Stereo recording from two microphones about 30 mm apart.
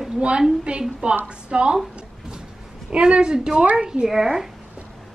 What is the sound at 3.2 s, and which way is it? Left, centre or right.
Speech, right.